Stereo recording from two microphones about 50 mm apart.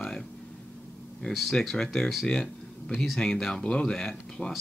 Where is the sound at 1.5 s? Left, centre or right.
Centre.